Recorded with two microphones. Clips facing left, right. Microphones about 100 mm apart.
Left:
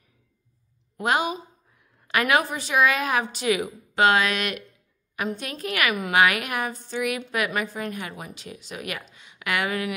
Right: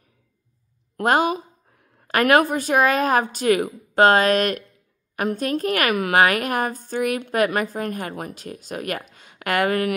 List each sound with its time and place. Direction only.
1.0 s speech: 45° right (ahead or behind)